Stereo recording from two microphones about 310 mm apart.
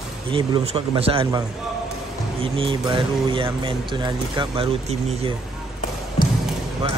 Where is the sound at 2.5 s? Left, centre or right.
Centre.